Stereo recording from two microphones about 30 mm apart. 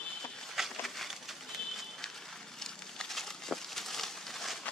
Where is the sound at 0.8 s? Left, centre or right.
Centre.